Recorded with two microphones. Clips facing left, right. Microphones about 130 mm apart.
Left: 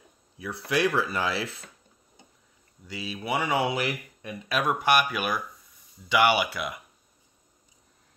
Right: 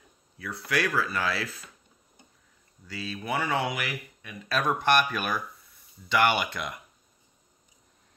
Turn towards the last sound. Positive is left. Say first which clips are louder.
# left 3 dB
turn(degrees=5)  # may be behind; listen again after turning